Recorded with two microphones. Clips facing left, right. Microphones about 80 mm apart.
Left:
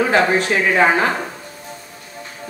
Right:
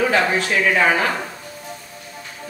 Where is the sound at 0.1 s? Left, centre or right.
Left.